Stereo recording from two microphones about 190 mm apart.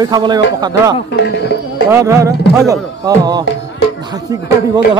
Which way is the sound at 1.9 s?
15° right (ahead or behind).